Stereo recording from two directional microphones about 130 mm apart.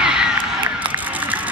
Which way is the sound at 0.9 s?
10° right (ahead or behind).